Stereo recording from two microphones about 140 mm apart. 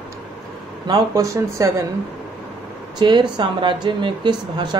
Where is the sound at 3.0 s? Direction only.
35° right (ahead or behind).